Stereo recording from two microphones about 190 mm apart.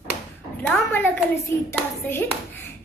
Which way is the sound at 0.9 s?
10° left (ahead or behind).